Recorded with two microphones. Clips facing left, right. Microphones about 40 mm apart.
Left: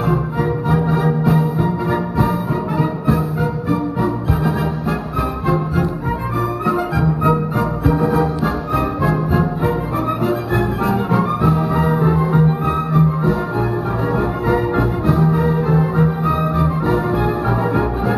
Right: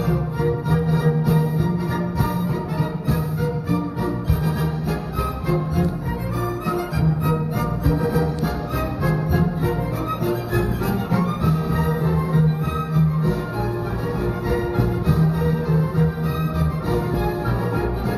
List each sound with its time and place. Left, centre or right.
0.0 s music: left
3.6 s music: left
6.7 s music: left
14.5 s music: left